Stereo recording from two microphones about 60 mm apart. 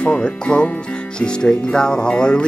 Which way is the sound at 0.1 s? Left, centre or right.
Centre.